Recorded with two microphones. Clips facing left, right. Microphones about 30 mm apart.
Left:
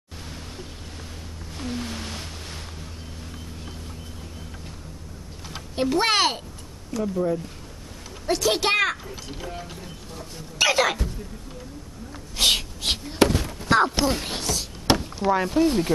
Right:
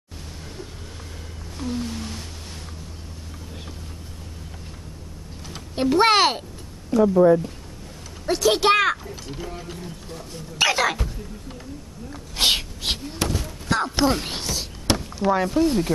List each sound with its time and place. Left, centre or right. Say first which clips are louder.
1.8 s a sound: right 2 dB; left
5.8 s speech: right 4 dB; centre
6.9 s speech: right 9 dB; right
8.3 s speech: right 4 dB; centre
9.0 s speech: right 1 dB; centre
12.4 s a sound: even; centre
12.8 s basketball bounce: left 1 dB; centre
13.2 s thunk: left 6 dB; left
13.9 s speech: right 3 dB; centre
14.9 s chop: left 2 dB; centre
15.2 s speech: right 1 dB; centre